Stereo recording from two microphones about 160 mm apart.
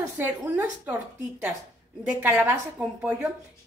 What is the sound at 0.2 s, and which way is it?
Speech, 15° right (ahead or behind).